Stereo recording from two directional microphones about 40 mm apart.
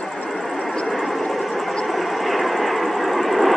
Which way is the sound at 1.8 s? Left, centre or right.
Centre.